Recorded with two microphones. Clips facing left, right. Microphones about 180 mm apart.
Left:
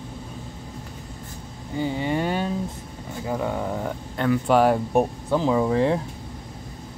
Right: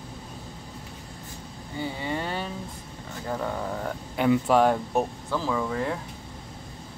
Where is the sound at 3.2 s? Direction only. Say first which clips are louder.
Left 4 dB; 10° left (ahead or behind).